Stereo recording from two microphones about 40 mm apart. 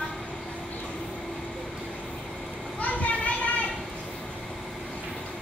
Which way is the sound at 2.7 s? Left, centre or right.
Left.